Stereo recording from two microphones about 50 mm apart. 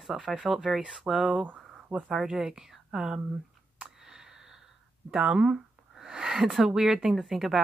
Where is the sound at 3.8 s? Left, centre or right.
Centre.